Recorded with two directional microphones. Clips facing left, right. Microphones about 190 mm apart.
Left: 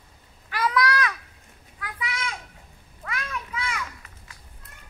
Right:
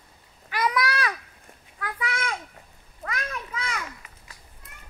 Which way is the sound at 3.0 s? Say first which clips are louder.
Right 1 dB; 40° right (ahead or behind).